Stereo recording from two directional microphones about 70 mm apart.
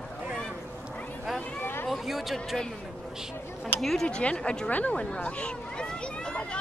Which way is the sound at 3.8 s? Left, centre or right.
Centre.